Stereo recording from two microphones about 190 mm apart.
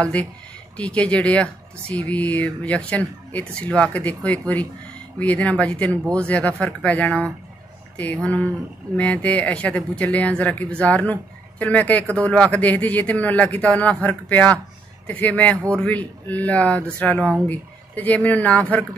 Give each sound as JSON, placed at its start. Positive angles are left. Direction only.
{"t": 0.0, "sound": "speech", "side_deg": 5}